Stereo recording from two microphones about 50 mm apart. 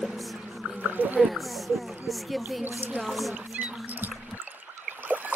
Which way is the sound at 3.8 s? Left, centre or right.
Right.